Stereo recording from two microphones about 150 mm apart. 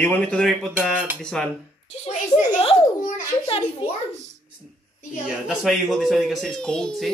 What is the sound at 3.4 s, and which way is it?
Speech, 35° left (ahead or behind).